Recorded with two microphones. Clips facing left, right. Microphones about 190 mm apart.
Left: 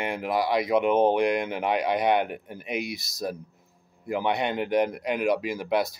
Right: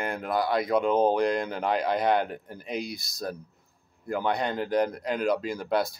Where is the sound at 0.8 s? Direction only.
20° left (ahead or behind).